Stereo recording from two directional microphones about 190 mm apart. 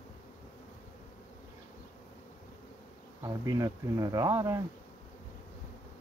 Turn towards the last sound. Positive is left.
turn(degrees=-20)  # may be behind; listen again after turning